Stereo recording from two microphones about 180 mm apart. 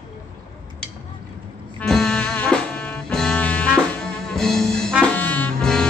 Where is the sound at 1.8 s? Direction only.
5° left (ahead or behind).